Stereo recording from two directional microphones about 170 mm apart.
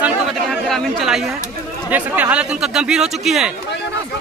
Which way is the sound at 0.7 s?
Centre (ahead or behind).